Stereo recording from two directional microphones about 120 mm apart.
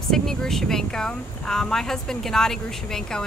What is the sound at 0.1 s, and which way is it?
Speech, 5° left (ahead or behind).